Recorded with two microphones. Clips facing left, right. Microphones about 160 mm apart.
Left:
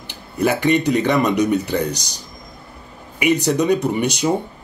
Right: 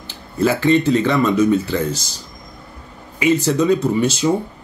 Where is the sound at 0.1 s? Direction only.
15° left (ahead or behind).